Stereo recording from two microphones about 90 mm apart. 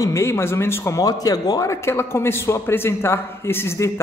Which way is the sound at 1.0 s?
45° left (ahead or behind).